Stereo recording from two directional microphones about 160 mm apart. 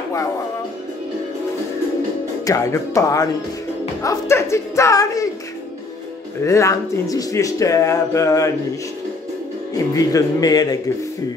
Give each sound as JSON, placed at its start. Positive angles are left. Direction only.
{"t": 2.4, "sound": "speech", "side_deg": 20}
{"t": 6.4, "sound": "speech", "side_deg": 20}
{"t": 9.9, "sound": "speech", "side_deg": 20}